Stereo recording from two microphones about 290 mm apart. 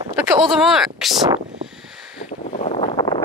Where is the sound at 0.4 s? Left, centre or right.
Centre.